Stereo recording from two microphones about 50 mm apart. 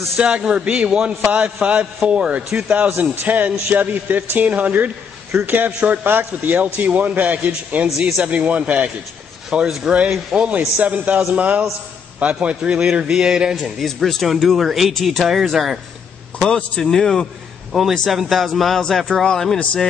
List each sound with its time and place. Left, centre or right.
0.2 s a man's voice: right
3.0 s a man's voice: right
9.5 s a man's voice: centre
9.8 s a man's voice: right
13.6 s speech: centre
16.3 s speech: centre